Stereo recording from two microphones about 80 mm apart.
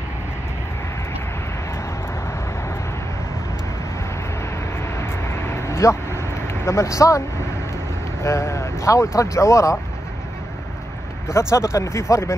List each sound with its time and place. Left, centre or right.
4.9 s vehicle: left
8.2 s speech: left
11.5 s speech: left